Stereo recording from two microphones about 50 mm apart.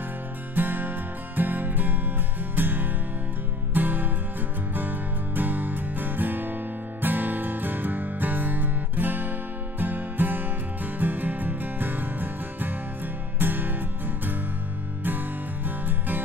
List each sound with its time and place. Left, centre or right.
0.6 s music: right